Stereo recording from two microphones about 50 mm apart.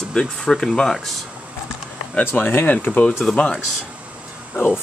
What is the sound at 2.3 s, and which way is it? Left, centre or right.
Speech, left.